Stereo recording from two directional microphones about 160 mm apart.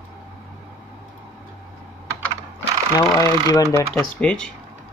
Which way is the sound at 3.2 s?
25° left (ahead or behind).